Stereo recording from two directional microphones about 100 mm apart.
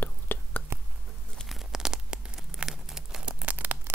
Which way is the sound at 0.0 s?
20° left (ahead or behind).